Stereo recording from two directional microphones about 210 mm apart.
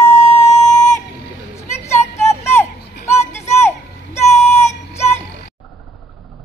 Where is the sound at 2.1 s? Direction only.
15° left (ahead or behind).